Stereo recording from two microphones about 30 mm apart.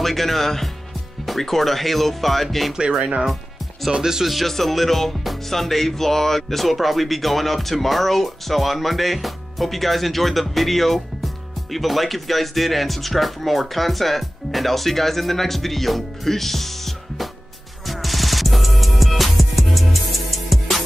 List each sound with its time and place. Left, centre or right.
0.0 s speech: centre
2.7 s speech: right
4.5 s speech: centre
17.8 s music: centre